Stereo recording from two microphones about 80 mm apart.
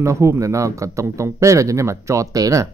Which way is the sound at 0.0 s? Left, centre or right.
Right.